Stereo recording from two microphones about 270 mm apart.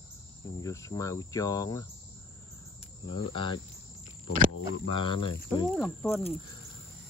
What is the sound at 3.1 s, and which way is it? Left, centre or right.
Cricket, centre.